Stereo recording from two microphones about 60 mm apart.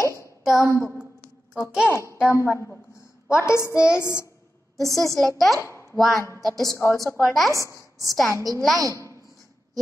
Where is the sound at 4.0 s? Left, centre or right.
Left.